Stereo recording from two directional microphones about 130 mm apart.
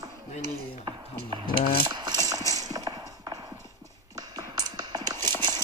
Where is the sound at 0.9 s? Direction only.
35° right (ahead or behind).